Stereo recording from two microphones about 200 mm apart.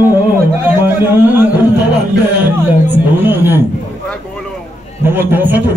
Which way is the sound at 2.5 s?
10° right (ahead or behind).